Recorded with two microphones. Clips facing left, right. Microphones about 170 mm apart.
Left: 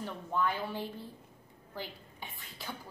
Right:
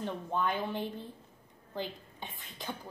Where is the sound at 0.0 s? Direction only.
20° right (ahead or behind).